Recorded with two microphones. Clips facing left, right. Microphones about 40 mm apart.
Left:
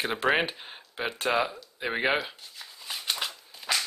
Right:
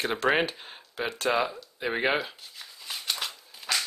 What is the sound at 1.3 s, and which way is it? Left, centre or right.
Shuffling cards, centre.